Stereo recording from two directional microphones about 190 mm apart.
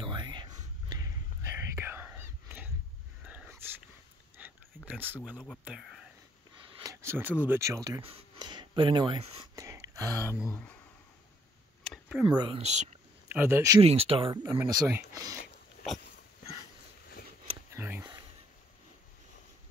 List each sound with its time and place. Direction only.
0.0 s whispering: 25° right (ahead or behind)
3.3 s dog: 5° right (ahead or behind)
4.4 s a sound: 5° right (ahead or behind)
4.8 s speech: 10° right (ahead or behind)
6.8 s speech: 15° right (ahead or behind)
8.0 s speech: 30° right (ahead or behind)
9.6 s a sound: 15° right (ahead or behind)
11.8 s a sound: centre (ahead or behind)
12.3 s speech: 25° right (ahead or behind)
13.3 s speech: 10° right (ahead or behind)
13.7 s speech: 30° right (ahead or behind)
17.6 s a sound: 15° right (ahead or behind)